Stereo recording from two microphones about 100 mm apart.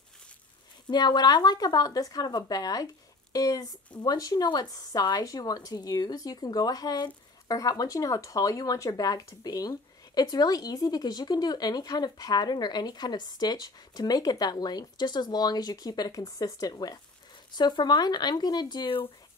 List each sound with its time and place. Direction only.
0.8 s speech: 45° left (ahead or behind)